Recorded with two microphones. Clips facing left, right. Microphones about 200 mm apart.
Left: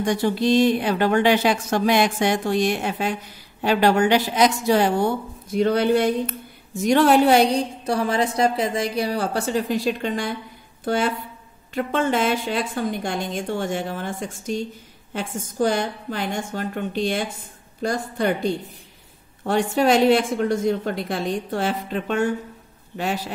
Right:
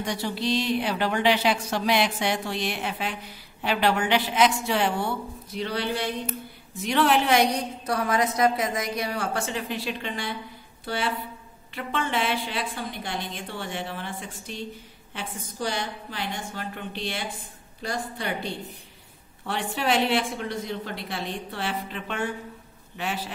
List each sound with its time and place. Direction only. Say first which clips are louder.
0.0 s a woman's voice: left 8 dB; 50° left (ahead or behind)